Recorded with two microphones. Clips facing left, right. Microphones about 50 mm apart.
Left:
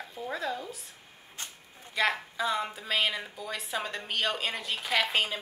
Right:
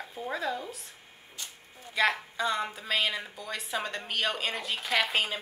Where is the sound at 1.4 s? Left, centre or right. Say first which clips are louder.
Left 1 dB; left.